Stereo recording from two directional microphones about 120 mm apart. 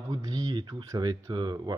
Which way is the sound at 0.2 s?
30° right (ahead or behind).